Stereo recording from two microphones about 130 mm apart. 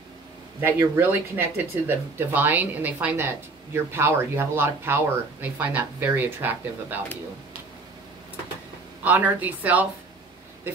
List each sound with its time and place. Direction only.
0.6 s a woman's voice: 20° right (ahead or behind)
9.0 s a woman's voice: 15° right (ahead or behind)